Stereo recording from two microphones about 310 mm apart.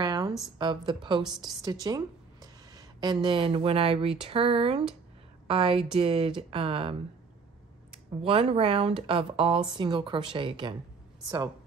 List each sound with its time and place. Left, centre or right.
0.0 s a sound: centre
0.4 s a woman's voice: centre
8.2 s a woman's voice: centre